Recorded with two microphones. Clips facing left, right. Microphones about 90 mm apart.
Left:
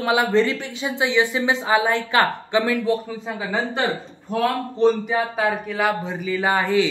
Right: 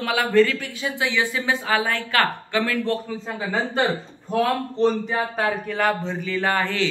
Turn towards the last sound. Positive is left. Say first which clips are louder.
# left 3 dB
turn(degrees=15)  # may be behind; listen again after turning